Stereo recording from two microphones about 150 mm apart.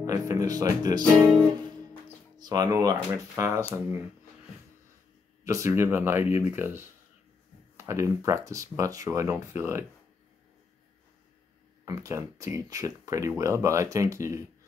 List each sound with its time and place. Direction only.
0.0 s speech: 20° right (ahead or behind)
2.3 s speech: 25° right (ahead or behind)
5.4 s speech: 20° right (ahead or behind)
11.8 s speech: 20° right (ahead or behind)